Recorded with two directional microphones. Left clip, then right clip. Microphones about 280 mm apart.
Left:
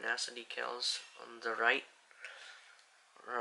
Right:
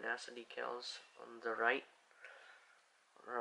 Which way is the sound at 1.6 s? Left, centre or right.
Centre.